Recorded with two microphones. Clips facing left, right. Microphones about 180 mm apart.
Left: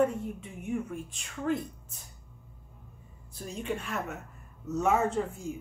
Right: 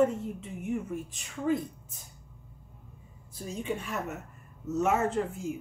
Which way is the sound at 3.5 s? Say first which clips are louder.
Right 1 dB; 5° right (ahead or behind).